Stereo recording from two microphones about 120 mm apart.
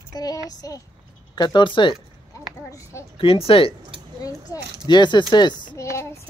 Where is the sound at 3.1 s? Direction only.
50° left (ahead or behind).